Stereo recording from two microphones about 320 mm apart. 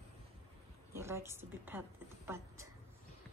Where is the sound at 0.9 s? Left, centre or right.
Centre.